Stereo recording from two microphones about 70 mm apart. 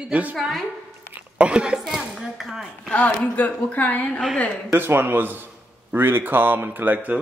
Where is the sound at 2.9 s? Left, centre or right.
Left.